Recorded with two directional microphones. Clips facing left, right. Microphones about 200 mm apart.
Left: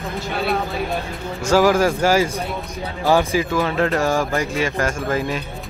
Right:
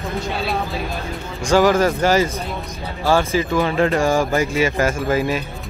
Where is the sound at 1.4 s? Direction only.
5° left (ahead or behind).